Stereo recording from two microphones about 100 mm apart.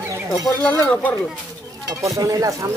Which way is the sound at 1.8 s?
35° right (ahead or behind).